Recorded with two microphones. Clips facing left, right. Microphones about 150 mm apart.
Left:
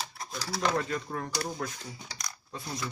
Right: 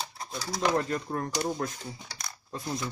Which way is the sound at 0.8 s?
35° right (ahead or behind).